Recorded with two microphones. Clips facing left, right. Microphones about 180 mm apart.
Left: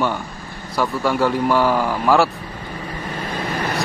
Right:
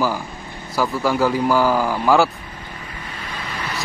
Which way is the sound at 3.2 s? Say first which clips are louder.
Left 6 dB; 45° left (ahead or behind).